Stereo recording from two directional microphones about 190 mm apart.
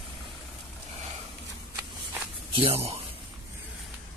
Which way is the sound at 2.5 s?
30° right (ahead or behind).